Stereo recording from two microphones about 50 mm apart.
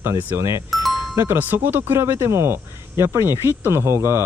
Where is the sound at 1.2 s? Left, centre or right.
Right.